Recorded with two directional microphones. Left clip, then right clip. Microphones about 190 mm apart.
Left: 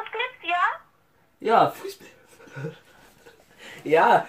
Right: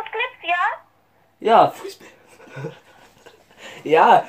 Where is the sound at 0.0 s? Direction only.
5° left (ahead or behind).